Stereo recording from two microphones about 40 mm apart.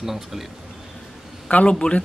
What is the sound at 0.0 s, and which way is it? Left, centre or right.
Speech, centre.